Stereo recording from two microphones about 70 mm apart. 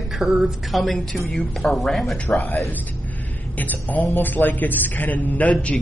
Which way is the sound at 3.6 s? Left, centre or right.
Left.